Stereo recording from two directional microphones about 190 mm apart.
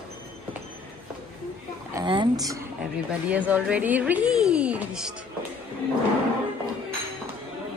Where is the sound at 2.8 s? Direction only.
5° right (ahead or behind).